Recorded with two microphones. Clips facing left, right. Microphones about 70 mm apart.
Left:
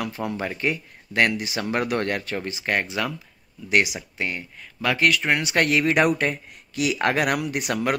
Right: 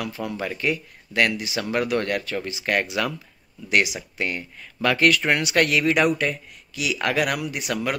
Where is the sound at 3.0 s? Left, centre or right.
Centre.